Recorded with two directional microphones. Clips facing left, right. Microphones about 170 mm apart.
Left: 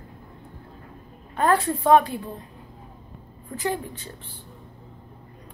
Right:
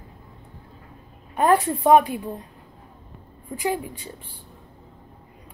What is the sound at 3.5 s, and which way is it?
Speech, 10° right (ahead or behind).